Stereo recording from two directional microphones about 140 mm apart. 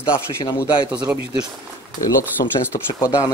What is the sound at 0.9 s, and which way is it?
Speech, 10° right (ahead or behind).